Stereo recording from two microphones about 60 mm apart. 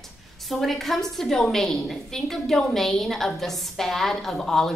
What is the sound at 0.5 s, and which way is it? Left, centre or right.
A woman's voice, centre.